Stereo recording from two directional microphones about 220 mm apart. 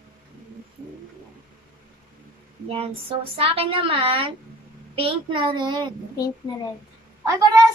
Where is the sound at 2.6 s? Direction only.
25° right (ahead or behind).